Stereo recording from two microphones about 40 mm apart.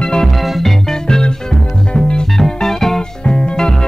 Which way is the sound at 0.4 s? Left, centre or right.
Centre.